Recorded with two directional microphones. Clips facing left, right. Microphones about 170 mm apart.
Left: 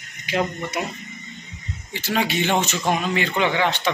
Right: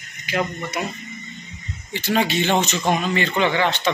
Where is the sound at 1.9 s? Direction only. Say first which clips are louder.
Right 3 dB; 5° left (ahead or behind).